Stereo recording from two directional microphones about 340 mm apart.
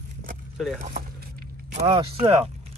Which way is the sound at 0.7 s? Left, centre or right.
Right.